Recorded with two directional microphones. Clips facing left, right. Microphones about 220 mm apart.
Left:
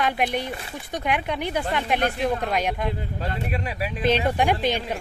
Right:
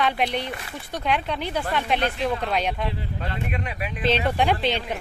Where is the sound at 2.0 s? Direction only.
50° left (ahead or behind).